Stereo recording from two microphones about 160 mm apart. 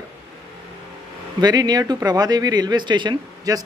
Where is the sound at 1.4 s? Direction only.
25° right (ahead or behind).